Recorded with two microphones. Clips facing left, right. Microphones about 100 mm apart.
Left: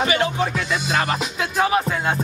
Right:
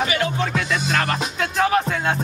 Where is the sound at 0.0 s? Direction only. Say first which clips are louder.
Left 2 dB; 30° left (ahead or behind).